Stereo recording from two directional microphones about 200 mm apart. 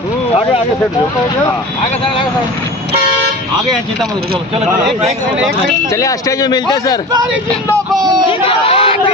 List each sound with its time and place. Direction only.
5.9 s a man's voice: 15° left (ahead or behind)
8.3 s speech: 25° left (ahead or behind)